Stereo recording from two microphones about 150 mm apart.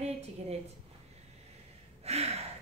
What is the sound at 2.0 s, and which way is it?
Speech, 45° right (ahead or behind).